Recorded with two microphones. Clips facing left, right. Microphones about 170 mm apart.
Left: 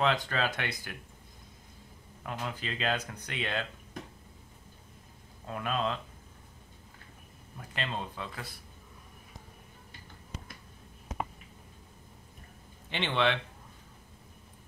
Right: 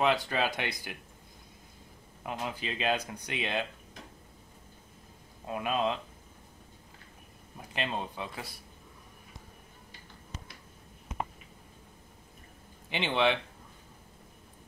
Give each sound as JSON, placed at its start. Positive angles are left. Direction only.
{"t": 0.0, "sound": "speech", "side_deg": -15}
{"t": 2.2, "sound": "speech", "side_deg": -15}
{"t": 5.5, "sound": "speech", "side_deg": -15}
{"t": 7.5, "sound": "speech", "side_deg": -15}
{"t": 12.9, "sound": "speech", "side_deg": -15}